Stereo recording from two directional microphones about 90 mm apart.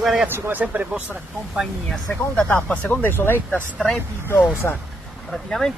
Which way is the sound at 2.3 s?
15° left (ahead or behind).